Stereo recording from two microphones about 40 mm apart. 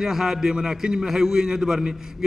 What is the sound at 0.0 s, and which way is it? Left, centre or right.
A man's voice, centre.